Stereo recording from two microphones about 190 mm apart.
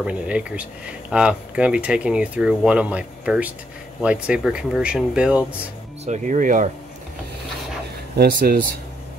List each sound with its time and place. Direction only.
0.0 s speech: 5° right (ahead or behind)
6.0 s speech: 40° right (ahead or behind)
8.2 s speech: 50° right (ahead or behind)